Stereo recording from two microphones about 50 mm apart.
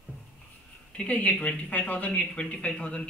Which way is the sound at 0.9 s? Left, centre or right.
Left.